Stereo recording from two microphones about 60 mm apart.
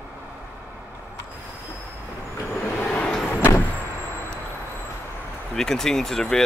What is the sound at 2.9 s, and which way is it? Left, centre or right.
Vehicle, left.